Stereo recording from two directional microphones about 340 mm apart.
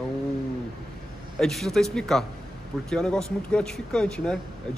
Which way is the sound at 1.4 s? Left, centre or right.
Centre.